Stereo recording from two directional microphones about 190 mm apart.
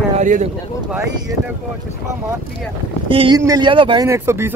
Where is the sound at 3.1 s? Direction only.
25° right (ahead or behind).